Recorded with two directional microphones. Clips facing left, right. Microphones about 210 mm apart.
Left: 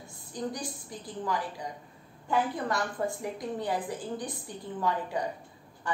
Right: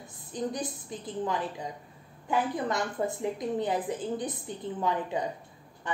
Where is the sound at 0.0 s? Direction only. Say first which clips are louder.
Right 2 dB; 20° right (ahead or behind).